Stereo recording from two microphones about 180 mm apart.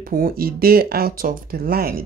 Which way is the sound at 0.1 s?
55° right (ahead or behind).